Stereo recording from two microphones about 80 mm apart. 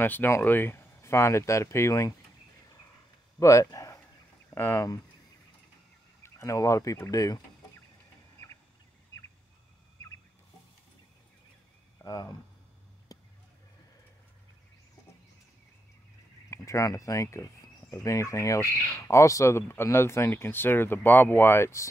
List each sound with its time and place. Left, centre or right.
0.0 s speech: left
3.3 s speech: left
4.6 s speech: left
6.2 s speech: left
12.0 s speech: left
13.1 s a sound: left
16.4 s speech: left